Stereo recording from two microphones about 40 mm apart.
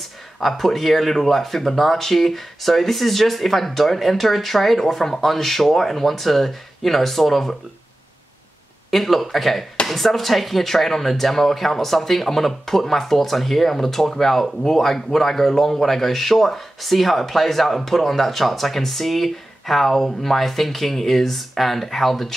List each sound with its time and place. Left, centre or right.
0.0 s speech: centre
8.9 s speech: centre